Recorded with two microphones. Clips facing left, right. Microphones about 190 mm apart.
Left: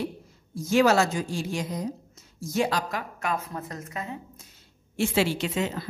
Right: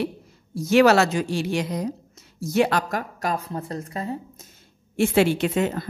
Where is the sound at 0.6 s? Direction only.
70° right (ahead or behind).